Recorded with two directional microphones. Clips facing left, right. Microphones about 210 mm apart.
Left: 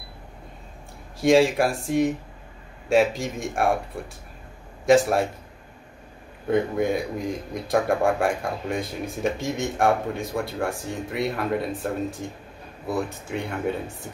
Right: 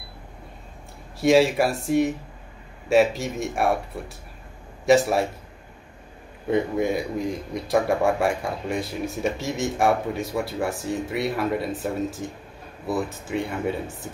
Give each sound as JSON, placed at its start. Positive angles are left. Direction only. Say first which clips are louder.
{"t": 1.2, "sound": "speech", "louder": "even", "side_deg": 0}
{"t": 4.8, "sound": "speech", "louder": "even", "side_deg": 0}
{"t": 6.4, "sound": "speech", "louder": "even", "side_deg": 0}